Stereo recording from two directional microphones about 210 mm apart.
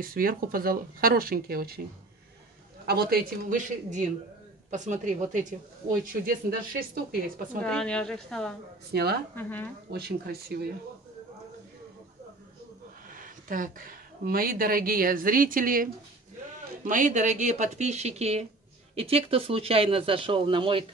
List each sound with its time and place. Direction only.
0.0 s speech: 45° right (ahead or behind)
2.9 s speech: 45° right (ahead or behind)
6.8 s speech: 45° right (ahead or behind)
7.6 s a woman's voice: 5° left (ahead or behind)
8.9 s speech: 50° right (ahead or behind)
9.3 s speech: 10° left (ahead or behind)
9.8 s speech: 50° right (ahead or behind)
13.1 s speech: 40° right (ahead or behind); by 20.8 s 25° right (ahead or behind)